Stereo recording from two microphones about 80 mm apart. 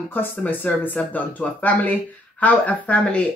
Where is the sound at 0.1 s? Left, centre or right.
Left.